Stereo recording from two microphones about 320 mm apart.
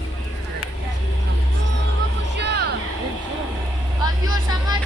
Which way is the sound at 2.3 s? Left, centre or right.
Right.